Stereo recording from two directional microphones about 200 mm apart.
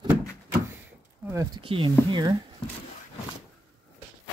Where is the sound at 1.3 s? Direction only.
20° right (ahead or behind).